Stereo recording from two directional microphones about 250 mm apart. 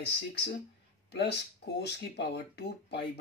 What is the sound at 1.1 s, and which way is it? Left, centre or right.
Speech, left.